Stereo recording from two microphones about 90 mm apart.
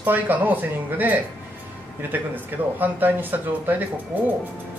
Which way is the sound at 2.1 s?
20° right (ahead or behind).